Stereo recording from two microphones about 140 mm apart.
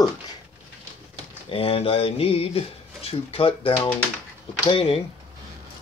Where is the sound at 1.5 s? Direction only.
45° left (ahead or behind).